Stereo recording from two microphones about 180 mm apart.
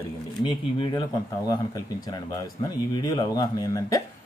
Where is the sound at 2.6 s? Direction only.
25° left (ahead or behind).